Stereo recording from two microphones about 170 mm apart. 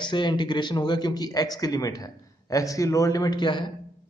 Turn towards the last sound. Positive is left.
turn(degrees=25)  # may be behind; listen again after turning